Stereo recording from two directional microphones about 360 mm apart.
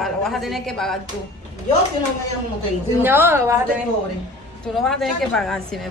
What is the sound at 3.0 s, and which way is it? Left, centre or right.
Speech, centre.